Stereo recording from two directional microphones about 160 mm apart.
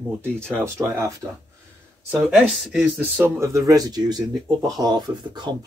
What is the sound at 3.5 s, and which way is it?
Speech, 25° right (ahead or behind).